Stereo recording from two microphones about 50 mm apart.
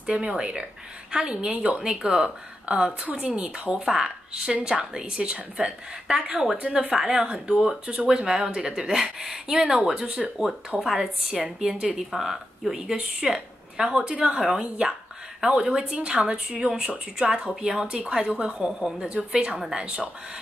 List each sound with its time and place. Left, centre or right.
0.0 s a woman's voice: centre
1.8 s a woman's voice: centre
6.4 s a woman's voice: centre
19.0 s a woman's voice: right